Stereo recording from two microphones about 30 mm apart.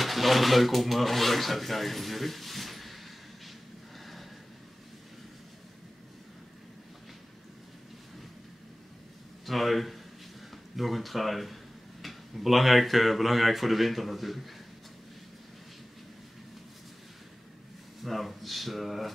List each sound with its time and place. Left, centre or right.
0.0 s speech: centre
4.0 s gasp: centre
9.5 s speech: centre
18.0 s speech: centre